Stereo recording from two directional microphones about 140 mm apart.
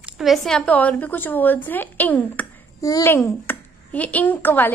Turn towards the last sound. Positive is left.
turn(degrees=15)  # may be behind; listen again after turning